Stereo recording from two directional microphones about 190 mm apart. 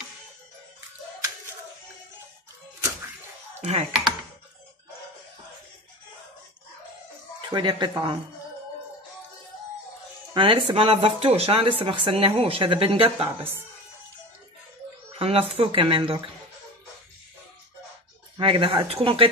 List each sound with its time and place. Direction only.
3.6 s speech: 35° right (ahead or behind)
7.4 s speech: 25° right (ahead or behind)
10.3 s speech: 25° right (ahead or behind)
15.1 s speech: 30° right (ahead or behind)
18.4 s speech: 30° right (ahead or behind)